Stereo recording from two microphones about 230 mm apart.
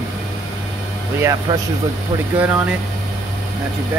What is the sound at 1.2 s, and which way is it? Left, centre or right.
Speech, centre.